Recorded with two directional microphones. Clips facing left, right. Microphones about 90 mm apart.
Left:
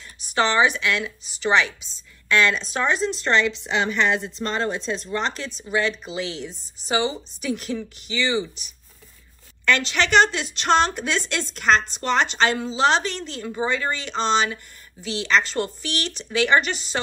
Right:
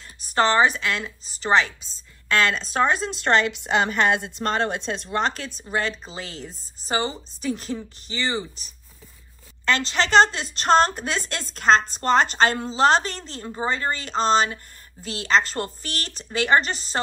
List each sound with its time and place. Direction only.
0.2 s a woman's voice: 40° right (ahead or behind)